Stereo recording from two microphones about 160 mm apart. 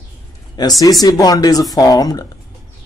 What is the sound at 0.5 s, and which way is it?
Speech, 25° left (ahead or behind).